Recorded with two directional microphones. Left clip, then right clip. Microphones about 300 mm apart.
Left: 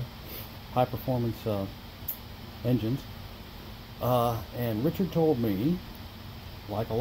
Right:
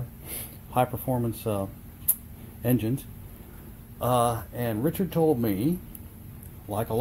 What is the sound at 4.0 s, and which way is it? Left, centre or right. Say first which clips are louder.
Speech: right 3 dB; centre.